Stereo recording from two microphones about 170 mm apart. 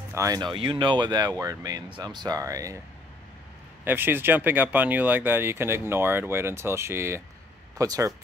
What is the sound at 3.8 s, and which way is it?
Speech, 10° right (ahead or behind).